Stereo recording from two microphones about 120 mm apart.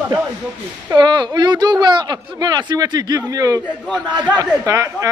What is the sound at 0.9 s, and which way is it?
Speech, 40° right (ahead or behind).